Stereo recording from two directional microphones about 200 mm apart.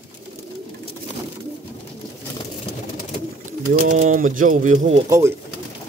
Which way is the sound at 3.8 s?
40° right (ahead or behind).